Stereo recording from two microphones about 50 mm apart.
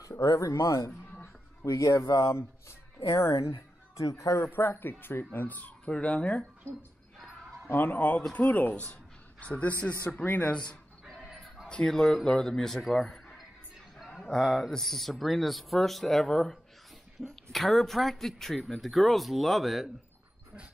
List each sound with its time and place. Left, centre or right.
0.2 s speech: left
3.9 s speech: left
4.4 s speech: left
5.9 s speech: centre
7.2 s a sound: centre
7.7 s speech: left
11.2 s a sound: centre
11.7 s speech: centre